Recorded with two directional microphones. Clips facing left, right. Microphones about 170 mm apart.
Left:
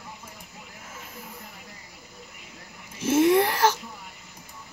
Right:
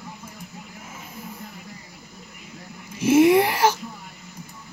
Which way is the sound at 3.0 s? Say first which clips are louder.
Right 4 dB; 10° right (ahead or behind).